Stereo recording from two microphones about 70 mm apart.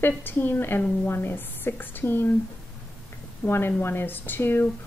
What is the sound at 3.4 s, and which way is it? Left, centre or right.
Speech, left.